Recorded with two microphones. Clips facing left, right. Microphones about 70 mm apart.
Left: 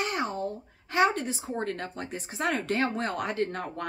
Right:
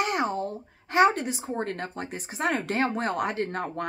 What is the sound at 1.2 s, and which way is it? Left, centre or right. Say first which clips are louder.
Speech: right 2 dB; centre.